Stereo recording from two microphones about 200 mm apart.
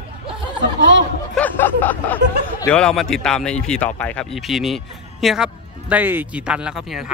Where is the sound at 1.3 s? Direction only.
10° left (ahead or behind).